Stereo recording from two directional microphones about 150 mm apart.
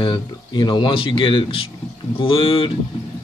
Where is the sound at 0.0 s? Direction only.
30° left (ahead or behind).